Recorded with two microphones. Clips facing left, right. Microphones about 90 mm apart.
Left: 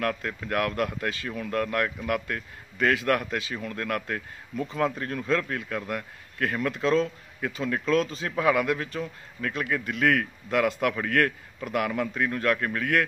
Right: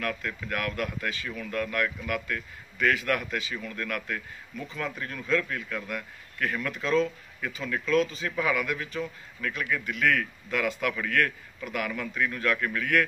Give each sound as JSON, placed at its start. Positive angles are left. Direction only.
{"t": 0.0, "sound": "speech", "side_deg": 40}